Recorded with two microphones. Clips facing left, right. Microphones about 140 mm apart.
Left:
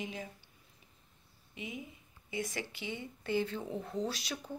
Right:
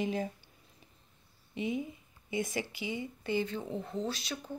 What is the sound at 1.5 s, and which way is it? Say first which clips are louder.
Speech: right 10 dB; 30° right (ahead or behind).